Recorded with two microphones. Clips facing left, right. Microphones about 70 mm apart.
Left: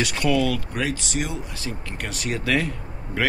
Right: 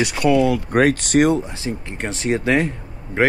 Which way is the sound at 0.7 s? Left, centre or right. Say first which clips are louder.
Right 11 dB; right.